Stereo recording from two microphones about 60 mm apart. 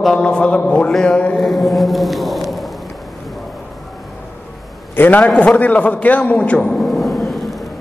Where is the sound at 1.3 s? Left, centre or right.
Centre.